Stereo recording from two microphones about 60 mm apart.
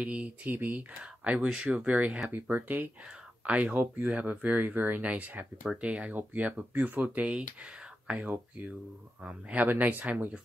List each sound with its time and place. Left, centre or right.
0.0 s speech: right
2.2 s speech: right